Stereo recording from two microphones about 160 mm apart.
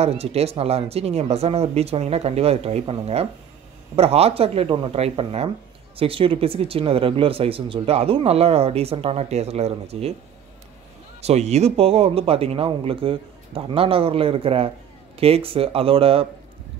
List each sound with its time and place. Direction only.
0.0 s speech: 40° right (ahead or behind)
11.1 s speech: 40° right (ahead or behind)